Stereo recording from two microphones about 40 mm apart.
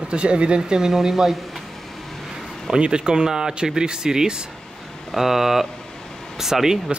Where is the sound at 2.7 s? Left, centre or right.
Right.